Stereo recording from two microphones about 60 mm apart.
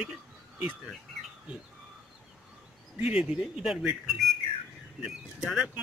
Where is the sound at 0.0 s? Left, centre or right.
Centre.